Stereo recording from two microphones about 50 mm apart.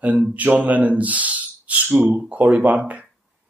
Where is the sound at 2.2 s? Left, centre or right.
Right.